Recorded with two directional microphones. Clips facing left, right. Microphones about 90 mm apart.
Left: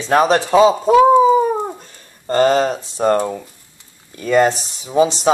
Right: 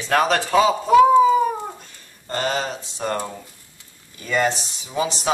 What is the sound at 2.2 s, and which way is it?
Speech, 40° left (ahead or behind).